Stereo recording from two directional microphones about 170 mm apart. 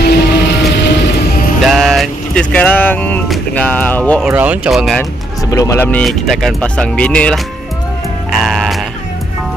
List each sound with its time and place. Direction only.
0.0 s music: 75° left (ahead or behind)
1.6 s vehicle: centre (ahead or behind)
3.3 s speech: 5° left (ahead or behind)
4.2 s speech: 10° right (ahead or behind)
5.5 s speech: 20° left (ahead or behind)
8.3 s sheep: centre (ahead or behind)